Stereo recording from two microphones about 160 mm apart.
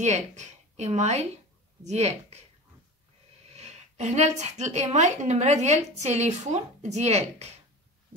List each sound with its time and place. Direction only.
0.0 s a woman's voice: 45° right (ahead or behind)
3.5 s a woman's voice: 45° right (ahead or behind)